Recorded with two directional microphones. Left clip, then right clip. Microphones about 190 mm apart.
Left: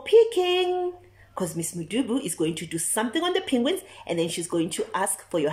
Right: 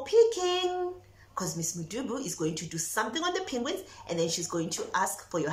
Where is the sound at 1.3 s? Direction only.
15° left (ahead or behind).